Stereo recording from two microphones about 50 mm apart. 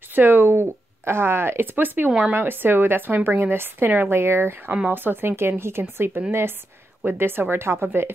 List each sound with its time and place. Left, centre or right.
0.1 s speech: right
4.1 s speech: right